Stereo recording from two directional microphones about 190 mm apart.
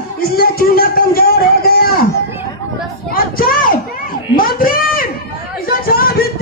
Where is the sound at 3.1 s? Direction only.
50° left (ahead or behind).